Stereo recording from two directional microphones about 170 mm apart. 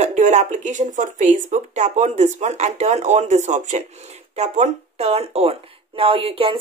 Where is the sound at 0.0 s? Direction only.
45° right (ahead or behind).